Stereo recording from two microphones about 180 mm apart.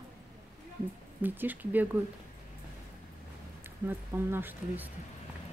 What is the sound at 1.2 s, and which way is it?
Speech, 10° right (ahead or behind).